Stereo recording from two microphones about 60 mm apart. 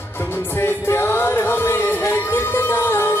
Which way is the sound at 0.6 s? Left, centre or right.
Left.